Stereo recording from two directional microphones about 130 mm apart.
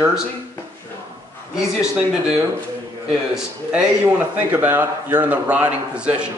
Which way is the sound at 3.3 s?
10° right (ahead or behind).